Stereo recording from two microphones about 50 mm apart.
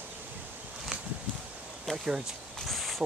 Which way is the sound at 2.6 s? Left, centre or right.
Centre.